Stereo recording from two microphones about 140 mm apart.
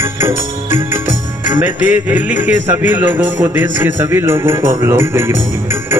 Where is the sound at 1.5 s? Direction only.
15° right (ahead or behind).